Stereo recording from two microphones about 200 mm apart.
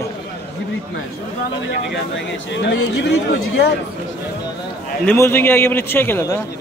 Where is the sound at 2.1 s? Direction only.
60° left (ahead or behind).